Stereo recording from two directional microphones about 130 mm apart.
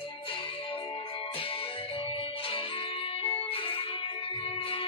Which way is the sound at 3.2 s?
45° left (ahead or behind).